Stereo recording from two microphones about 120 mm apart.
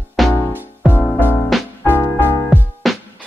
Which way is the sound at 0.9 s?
15° left (ahead or behind).